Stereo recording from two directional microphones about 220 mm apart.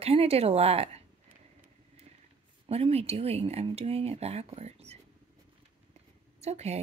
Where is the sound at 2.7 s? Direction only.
25° right (ahead or behind).